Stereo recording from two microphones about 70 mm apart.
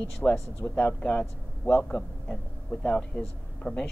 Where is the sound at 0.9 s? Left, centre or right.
Centre.